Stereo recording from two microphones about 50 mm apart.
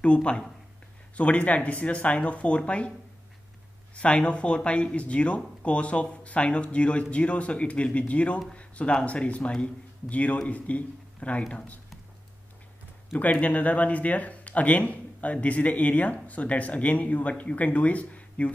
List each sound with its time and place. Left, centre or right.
0.0 s speech: left
3.9 s a man's voice: left
13.1 s speech: left